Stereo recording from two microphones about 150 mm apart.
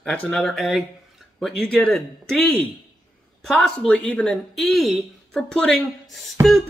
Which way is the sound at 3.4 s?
5° left (ahead or behind).